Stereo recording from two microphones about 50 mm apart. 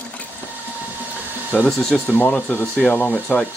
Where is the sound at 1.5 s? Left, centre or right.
Centre.